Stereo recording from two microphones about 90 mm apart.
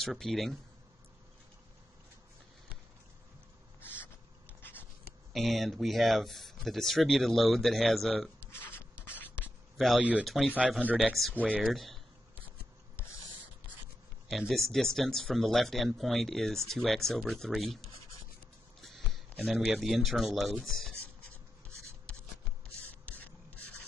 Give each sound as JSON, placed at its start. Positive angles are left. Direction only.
{"t": 0.0, "sound": "speech", "side_deg": 5}
{"t": 4.6, "sound": "writing", "side_deg": 25}
{"t": 5.3, "sound": "speech", "side_deg": 0}
{"t": 8.5, "sound": "a sound", "side_deg": 25}
{"t": 9.8, "sound": "speech", "side_deg": 0}
{"t": 14.3, "sound": "speech", "side_deg": 0}
{"t": 18.8, "sound": "speech", "side_deg": 0}
{"t": 21.3, "sound": "rub", "side_deg": -30}
{"t": 22.8, "sound": "a sound", "side_deg": 15}